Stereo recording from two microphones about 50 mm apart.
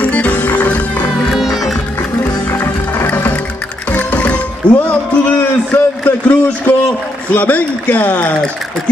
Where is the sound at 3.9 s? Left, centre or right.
Left.